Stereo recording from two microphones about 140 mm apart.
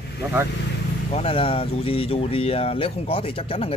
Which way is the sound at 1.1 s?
45° left (ahead or behind).